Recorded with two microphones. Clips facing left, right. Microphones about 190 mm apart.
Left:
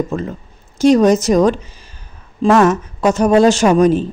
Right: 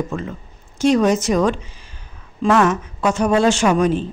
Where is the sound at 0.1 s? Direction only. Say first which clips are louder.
Left 4 dB; 35° left (ahead or behind).